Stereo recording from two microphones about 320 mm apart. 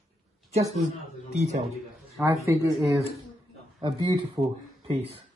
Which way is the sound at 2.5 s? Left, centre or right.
Centre.